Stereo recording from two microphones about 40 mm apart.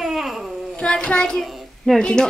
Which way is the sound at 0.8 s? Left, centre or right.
Left.